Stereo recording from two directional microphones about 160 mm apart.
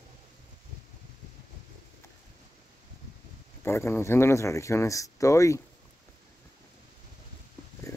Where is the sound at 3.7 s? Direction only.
15° left (ahead or behind).